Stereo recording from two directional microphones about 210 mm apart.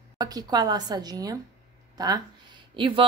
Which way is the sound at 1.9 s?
20° right (ahead or behind).